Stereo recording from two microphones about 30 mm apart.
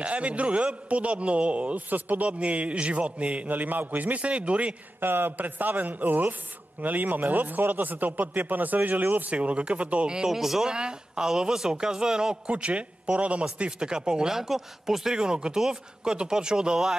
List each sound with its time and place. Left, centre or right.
0.0 s a man's voice: right
1.9 s a man's voice: right
2.2 s a man's voice: right
3.4 s a man's voice: right
4.2 s a man's voice: right
5.4 s a man's voice: right
9.3 s a man's voice: right
10.0 s speech: right
10.3 s speech: centre
10.6 s speech: right
12.4 s a man's voice: right
13.7 s speech: right
14.3 s speech: centre
15.1 s speech: right